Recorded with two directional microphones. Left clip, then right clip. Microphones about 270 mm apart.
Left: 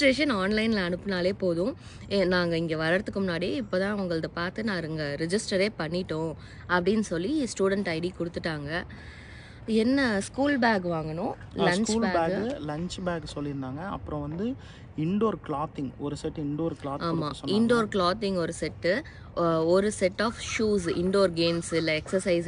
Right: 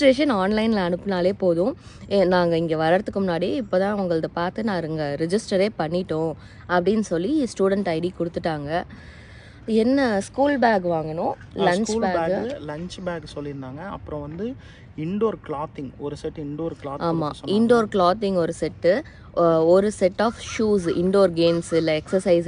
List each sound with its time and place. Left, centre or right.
0.0 s speech: centre
12.4 s speech: centre
17.0 s speech: centre